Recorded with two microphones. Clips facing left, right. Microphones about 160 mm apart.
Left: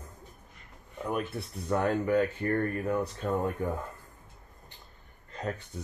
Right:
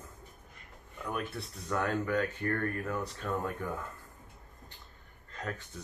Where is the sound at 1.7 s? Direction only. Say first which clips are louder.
Left 5 dB; 30° left (ahead or behind).